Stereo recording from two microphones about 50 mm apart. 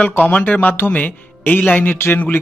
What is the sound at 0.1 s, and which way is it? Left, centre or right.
Speech, left.